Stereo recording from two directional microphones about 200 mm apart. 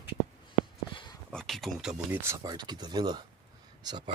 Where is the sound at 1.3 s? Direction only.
Centre (ahead or behind).